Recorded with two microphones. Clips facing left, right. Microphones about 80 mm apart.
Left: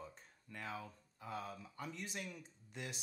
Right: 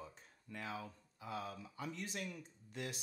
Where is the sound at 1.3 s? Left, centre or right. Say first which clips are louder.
Right 1 dB; left.